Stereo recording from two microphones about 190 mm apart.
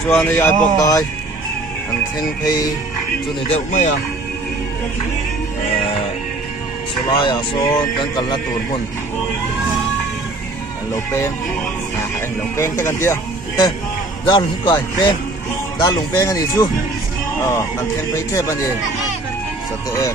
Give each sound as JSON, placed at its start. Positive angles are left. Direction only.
{"t": 0.1, "sound": "speech", "side_deg": 10}
{"t": 2.4, "sound": "speech", "side_deg": 20}
{"t": 3.4, "sound": "speech", "side_deg": 40}
{"t": 7.2, "sound": "speech", "side_deg": 25}
{"t": 12.5, "sound": "speech", "side_deg": 15}
{"t": 14.2, "sound": "speech", "side_deg": 25}